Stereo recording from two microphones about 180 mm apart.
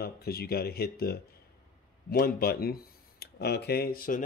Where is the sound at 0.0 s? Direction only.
60° left (ahead or behind).